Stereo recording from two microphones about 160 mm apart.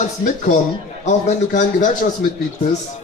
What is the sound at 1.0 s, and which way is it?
Speech, 50° left (ahead or behind).